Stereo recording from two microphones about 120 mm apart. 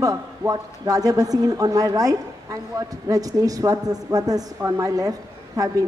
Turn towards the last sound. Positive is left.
turn(degrees=-30)  # may be behind; listen again after turning